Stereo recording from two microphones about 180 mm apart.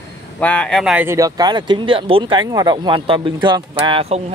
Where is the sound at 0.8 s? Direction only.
5° right (ahead or behind); by 4.2 s 35° right (ahead or behind).